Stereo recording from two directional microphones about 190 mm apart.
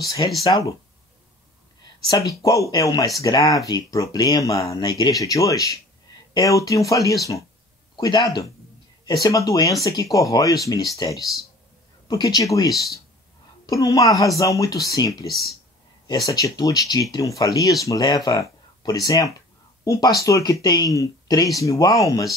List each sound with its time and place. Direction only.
0.0 s speech: 20° left (ahead or behind)
2.0 s speech: 20° left (ahead or behind)
16.3 s speech: 20° left (ahead or behind)